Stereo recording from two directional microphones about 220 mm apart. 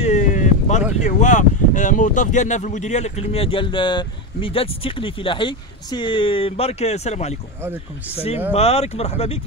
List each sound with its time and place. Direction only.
0.0 s boat: 35° left (ahead or behind)
1.0 s speech: 35° left (ahead or behind)
8.5 s speech: 25° left (ahead or behind)